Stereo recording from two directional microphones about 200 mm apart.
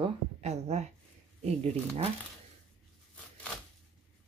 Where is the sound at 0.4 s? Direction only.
35° right (ahead or behind).